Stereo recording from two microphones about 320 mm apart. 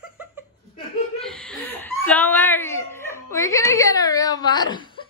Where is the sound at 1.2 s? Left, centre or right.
Centre.